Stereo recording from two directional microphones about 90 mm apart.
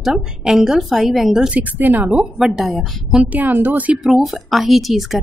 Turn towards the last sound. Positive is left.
turn(degrees=0)  # may be behind; listen again after turning